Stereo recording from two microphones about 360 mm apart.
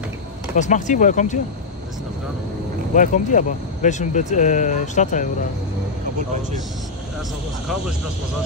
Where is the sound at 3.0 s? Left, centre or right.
Left.